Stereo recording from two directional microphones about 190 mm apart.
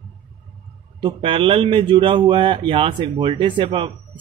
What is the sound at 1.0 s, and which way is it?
A man's voice, 25° right (ahead or behind).